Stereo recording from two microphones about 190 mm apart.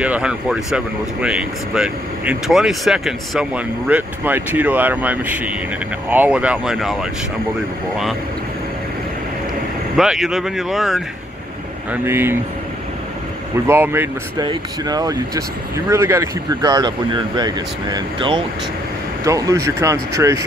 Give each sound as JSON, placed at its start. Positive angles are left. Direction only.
{"t": 0.0, "sound": "speech", "side_deg": -5}
{"t": 9.9, "sound": "speech", "side_deg": 0}
{"t": 11.9, "sound": "speech", "side_deg": -10}
{"t": 13.7, "sound": "speech", "side_deg": -10}